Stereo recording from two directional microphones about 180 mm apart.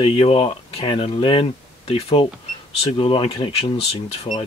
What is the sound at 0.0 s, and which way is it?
Speech, 35° left (ahead or behind).